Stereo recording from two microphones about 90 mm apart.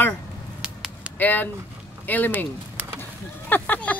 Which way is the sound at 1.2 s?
20° left (ahead or behind).